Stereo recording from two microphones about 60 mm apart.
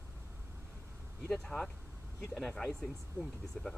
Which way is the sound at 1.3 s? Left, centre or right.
Centre.